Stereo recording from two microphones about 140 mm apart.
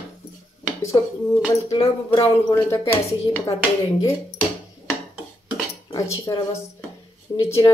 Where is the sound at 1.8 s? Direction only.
40° left (ahead or behind).